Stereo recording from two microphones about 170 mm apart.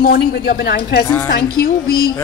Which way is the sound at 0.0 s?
65° left (ahead or behind).